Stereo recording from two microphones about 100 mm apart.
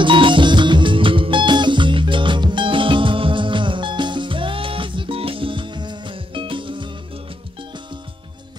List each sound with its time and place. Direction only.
0.0 s music: 55° right (ahead or behind)